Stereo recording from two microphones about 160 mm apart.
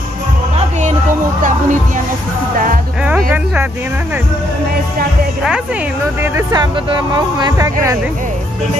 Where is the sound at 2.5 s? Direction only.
55° right (ahead or behind).